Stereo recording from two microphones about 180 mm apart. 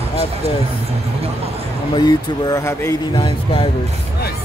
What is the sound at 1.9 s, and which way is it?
Speech, 20° left (ahead or behind).